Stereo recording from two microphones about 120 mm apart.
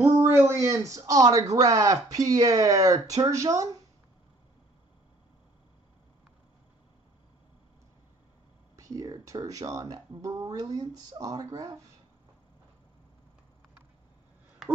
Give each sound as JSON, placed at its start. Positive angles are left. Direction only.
{"t": 0.0, "sound": "speech", "side_deg": -20}
{"t": 8.7, "sound": "speech", "side_deg": -30}